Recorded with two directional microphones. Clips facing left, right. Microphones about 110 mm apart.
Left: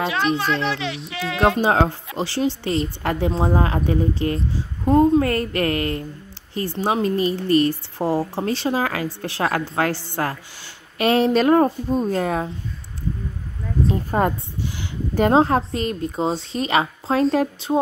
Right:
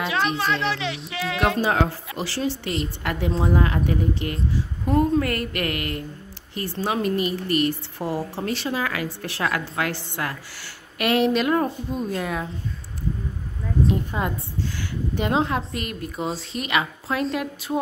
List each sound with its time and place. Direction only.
0.0 s speech: centre (ahead or behind)
1.6 s a woman's voice: 30° left (ahead or behind)
14.1 s a woman's voice: 50° left (ahead or behind); by 17.7 s 30° left (ahead or behind)